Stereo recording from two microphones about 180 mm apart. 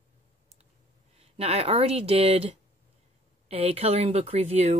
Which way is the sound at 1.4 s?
35° right (ahead or behind).